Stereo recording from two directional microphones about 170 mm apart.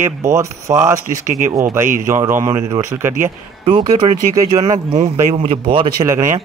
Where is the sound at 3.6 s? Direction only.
30° right (ahead or behind).